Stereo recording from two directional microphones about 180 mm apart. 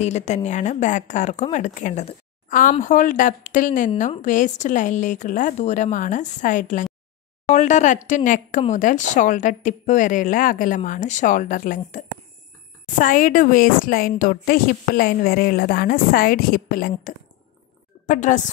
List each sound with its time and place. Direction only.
0.0 s speech: 40° left (ahead or behind)
18.0 s speech: 45° left (ahead or behind)